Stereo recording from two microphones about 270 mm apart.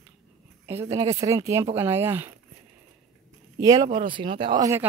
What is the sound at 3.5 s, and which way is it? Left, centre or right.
Speech, centre.